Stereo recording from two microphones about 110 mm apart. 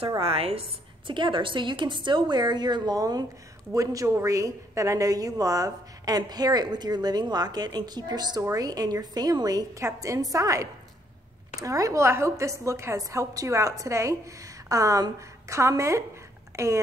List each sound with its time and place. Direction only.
0.2 s a woman's voice: 65° right (ahead or behind); by 16.8 s 25° right (ahead or behind)